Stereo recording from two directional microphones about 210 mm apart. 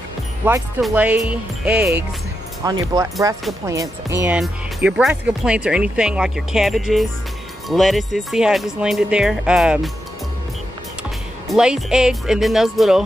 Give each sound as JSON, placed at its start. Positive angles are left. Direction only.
{"t": 0.4, "sound": "speech", "side_deg": -10}
{"t": 2.6, "sound": "speech", "side_deg": -20}
{"t": 4.2, "sound": "speech", "side_deg": -5}
{"t": 11.4, "sound": "speech", "side_deg": -5}